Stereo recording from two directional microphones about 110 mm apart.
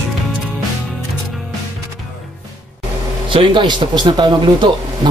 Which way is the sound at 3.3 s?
50° right (ahead or behind).